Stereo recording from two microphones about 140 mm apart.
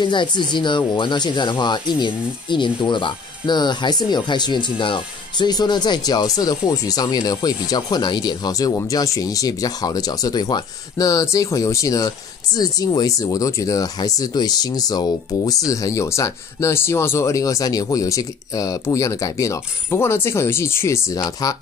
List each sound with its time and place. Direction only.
0.0 s speech: 35° left (ahead or behind)